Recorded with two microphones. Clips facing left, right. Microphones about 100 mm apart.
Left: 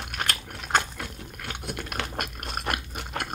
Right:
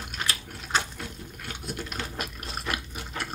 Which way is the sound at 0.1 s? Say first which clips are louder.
Left 3 dB; 60° left (ahead or behind).